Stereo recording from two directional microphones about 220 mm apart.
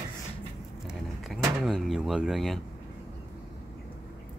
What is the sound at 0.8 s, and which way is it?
Door, centre (ahead or behind).